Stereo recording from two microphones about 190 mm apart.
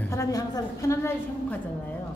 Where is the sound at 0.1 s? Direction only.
15° left (ahead or behind).